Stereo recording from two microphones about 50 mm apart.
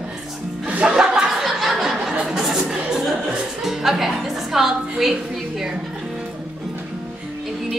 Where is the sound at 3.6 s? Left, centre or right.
Centre.